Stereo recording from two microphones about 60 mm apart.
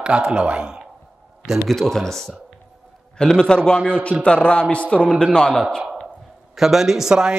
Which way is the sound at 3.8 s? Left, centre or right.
Left.